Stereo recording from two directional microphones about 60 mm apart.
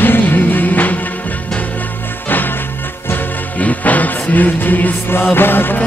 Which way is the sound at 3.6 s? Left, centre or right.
Left.